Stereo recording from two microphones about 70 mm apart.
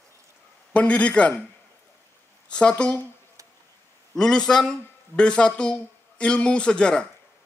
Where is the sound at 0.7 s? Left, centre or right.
Centre.